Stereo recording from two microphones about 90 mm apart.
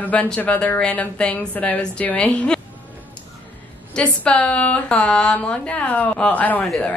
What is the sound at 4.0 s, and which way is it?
Speech, 15° left (ahead or behind).